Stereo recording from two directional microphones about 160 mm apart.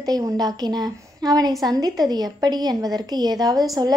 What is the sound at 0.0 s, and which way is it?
A woman's voice, 25° right (ahead or behind).